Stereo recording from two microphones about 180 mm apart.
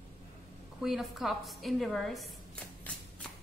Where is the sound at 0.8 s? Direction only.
Centre (ahead or behind).